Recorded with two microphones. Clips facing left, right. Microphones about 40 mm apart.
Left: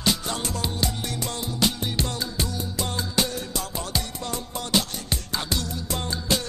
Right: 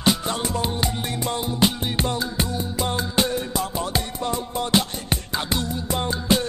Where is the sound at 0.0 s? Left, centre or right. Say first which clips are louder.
Right 4 dB; right.